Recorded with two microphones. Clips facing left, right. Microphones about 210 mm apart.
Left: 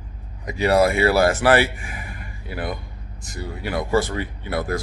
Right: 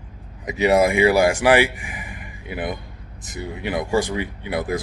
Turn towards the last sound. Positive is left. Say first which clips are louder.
# right 1 dB
turn(degrees=-15)  # may be behind; listen again after turning